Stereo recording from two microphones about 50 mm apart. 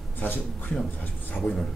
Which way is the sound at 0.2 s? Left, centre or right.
Left.